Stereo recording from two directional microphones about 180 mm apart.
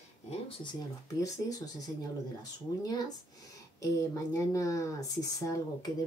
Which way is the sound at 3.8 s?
15° left (ahead or behind).